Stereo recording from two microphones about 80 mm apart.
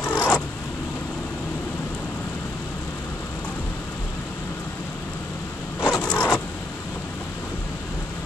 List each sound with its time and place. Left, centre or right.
0.1 s zipper: left
5.8 s vehicle: left